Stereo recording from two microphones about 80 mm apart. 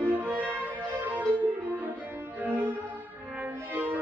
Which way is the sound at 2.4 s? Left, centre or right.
Right.